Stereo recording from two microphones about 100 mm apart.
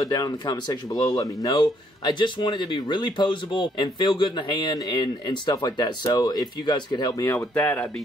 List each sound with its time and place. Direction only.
0.0 s speech: 40° left (ahead or behind)
7.2 s speech: 25° left (ahead or behind)